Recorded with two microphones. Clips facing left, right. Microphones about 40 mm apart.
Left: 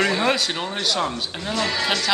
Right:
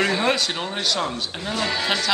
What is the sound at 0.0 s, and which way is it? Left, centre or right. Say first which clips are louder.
A man's voice: left 1 dB; centre.